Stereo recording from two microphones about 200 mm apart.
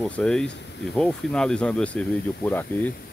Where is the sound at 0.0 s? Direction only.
5° left (ahead or behind).